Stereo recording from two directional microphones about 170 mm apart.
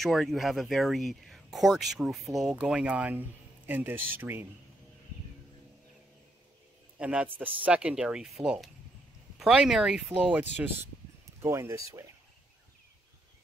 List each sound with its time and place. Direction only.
0.0 s speech: centre (ahead or behind)
7.0 s speech: 5° right (ahead or behind)